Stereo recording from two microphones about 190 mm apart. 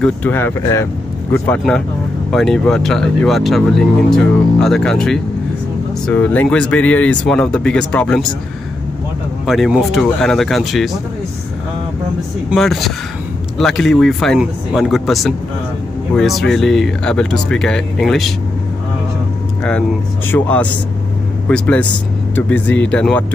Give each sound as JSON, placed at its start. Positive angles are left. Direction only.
{"t": 0.0, "sound": "speech", "side_deg": 10}
{"t": 2.3, "sound": "speech", "side_deg": 0}
{"t": 9.5, "sound": "speech", "side_deg": 0}
{"t": 12.4, "sound": "speech", "side_deg": 0}
{"t": 20.2, "sound": "speech", "side_deg": 10}